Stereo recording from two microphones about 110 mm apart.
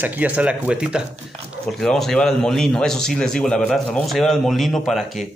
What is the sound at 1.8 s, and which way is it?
Speech, 5° left (ahead or behind).